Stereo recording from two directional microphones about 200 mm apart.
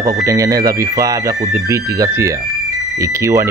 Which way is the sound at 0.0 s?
15° right (ahead or behind).